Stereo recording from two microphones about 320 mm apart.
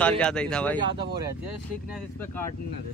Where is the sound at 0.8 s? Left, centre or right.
Centre.